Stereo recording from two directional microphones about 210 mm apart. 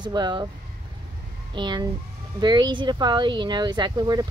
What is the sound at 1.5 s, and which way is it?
Speech, 20° right (ahead or behind).